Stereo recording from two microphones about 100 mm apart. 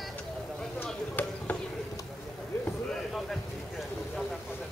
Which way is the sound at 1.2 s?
15° left (ahead or behind).